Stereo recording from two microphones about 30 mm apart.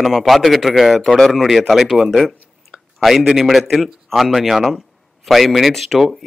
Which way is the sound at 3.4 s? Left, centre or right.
Centre.